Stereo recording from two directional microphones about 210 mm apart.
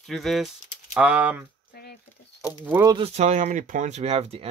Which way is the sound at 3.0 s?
30° right (ahead or behind).